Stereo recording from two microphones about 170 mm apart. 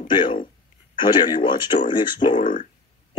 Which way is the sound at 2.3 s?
50° left (ahead or behind).